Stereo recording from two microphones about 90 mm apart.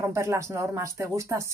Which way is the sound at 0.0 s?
35° right (ahead or behind).